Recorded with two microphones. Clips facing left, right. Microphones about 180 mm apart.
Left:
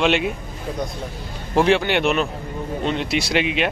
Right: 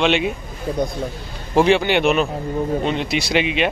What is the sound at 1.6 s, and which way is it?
Speech, centre (ahead or behind).